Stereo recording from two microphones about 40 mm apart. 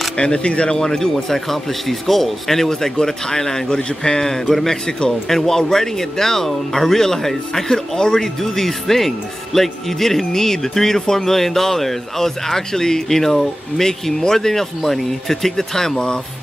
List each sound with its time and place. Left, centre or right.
0.2 s speech: left
0.8 s speech: centre
5.3 s speech: centre